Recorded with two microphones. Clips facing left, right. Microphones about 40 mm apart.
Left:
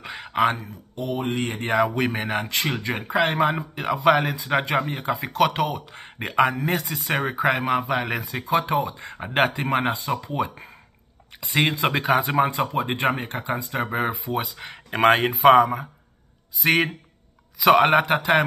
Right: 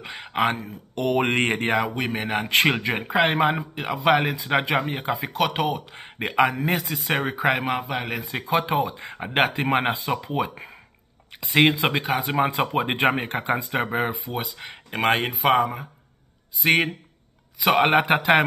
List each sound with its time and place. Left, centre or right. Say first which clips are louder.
0.0 s a sound: left 2 dB; centre
0.9 s speech: right 5 dB; right
1.8 s speech: left 3 dB; centre
2.5 s speech: right 6 dB; right
2.8 s speech: right 1 dB; centre
3.5 s speech: left 2 dB; centre
8.5 s speech: even; centre
12.7 s speech: right 2 dB; right
13.8 s speech: even; centre